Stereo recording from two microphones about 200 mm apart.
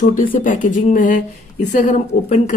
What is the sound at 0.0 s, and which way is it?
Speech, 40° left (ahead or behind).